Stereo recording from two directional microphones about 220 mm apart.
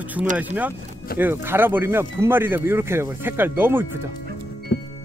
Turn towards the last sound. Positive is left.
turn(degrees=45)  # may be behind; listen again after turning